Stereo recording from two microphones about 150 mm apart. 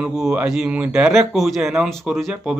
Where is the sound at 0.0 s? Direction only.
5° right (ahead or behind).